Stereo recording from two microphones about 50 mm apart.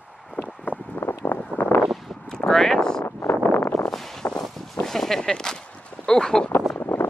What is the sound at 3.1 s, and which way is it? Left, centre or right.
Wind noise, left.